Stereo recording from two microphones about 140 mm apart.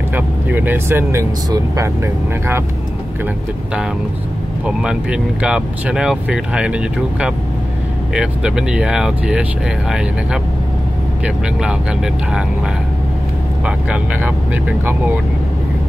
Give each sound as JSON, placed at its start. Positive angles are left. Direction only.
{"t": 0.1, "sound": "speech", "side_deg": -15}
{"t": 4.6, "sound": "speech", "side_deg": -5}
{"t": 13.7, "sound": "speech", "side_deg": -10}